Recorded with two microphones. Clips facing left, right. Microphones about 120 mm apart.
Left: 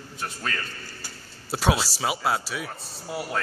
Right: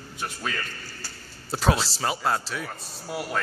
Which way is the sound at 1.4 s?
5° left (ahead or behind).